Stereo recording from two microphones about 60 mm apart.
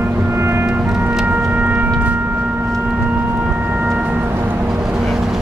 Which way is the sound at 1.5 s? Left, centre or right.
Right.